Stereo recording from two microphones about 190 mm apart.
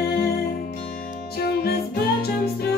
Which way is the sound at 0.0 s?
55° left (ahead or behind).